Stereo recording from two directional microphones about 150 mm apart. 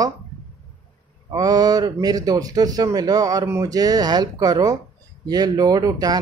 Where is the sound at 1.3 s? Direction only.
25° right (ahead or behind).